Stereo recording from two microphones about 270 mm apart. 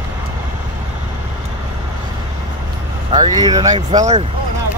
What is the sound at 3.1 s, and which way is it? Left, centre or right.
Speech, centre.